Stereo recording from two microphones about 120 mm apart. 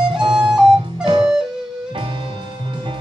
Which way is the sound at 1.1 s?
40° right (ahead or behind).